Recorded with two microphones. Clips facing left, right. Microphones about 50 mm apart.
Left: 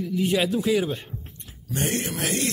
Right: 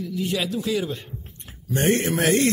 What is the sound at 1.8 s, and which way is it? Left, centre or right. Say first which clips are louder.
Speech: right 6 dB; right.